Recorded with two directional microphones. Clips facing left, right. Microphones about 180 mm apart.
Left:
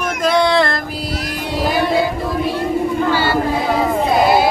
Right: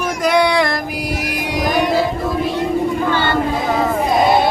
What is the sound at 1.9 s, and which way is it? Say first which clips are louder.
Child singing: even; centre (ahead or behind).